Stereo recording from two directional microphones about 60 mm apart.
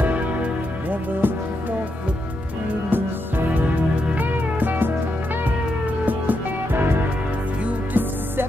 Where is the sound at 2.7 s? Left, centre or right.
Right.